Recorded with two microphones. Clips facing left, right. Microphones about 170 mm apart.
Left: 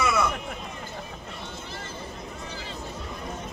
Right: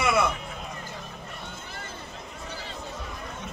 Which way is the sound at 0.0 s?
25° right (ahead or behind).